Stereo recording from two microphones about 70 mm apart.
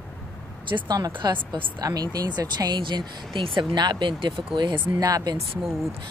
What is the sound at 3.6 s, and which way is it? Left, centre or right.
Speech, right.